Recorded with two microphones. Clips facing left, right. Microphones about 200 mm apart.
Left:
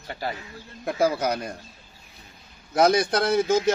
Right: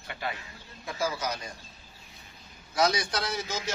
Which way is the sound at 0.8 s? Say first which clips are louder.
Left 9 dB; 60° left (ahead or behind).